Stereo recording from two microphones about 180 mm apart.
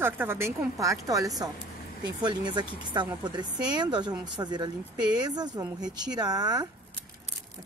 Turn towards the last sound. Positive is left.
turn(degrees=-20)  # may be behind; listen again after turning